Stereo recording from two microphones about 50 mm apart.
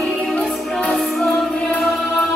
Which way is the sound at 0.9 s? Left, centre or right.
Centre.